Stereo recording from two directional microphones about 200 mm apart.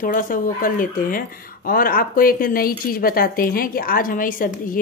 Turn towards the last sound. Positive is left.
turn(degrees=45)  # may be behind; listen again after turning